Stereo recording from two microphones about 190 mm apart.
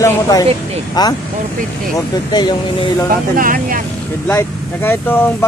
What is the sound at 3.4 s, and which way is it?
Speech, 45° right (ahead or behind).